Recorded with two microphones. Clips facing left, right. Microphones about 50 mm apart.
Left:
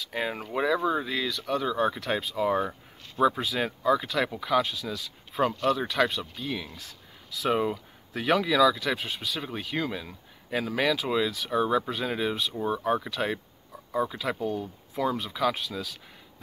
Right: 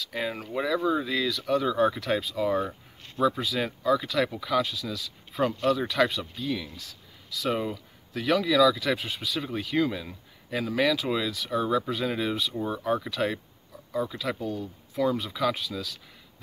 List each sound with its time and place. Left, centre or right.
0.0 s speech: centre
15.0 s speech: centre